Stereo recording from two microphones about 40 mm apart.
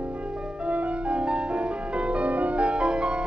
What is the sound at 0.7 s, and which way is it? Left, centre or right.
Music, right.